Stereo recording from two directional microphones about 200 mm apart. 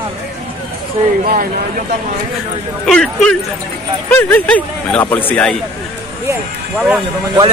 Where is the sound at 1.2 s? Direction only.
45° right (ahead or behind).